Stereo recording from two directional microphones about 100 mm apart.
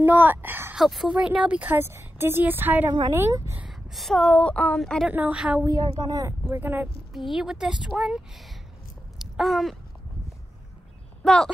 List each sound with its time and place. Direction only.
0.0 s a woman's voice: 20° right (ahead or behind)
0.7 s a woman's voice: 5° right (ahead or behind); by 2.9 s 20° right (ahead or behind)
3.1 s a woman's voice: 30° right (ahead or behind)
3.9 s a woman's voice: 5° left (ahead or behind)
5.1 s a woman's voice: 15° right (ahead or behind)
6.0 s speech: 40° right (ahead or behind)
6.5 s a woman's voice: 20° right (ahead or behind)
7.1 s a woman's voice: 5° right (ahead or behind)
9.2 s a sound: centre (ahead or behind)
11.2 s a woman's voice: 5° left (ahead or behind)